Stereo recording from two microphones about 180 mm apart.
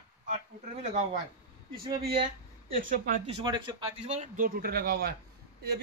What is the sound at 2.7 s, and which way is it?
Speech, 50° right (ahead or behind).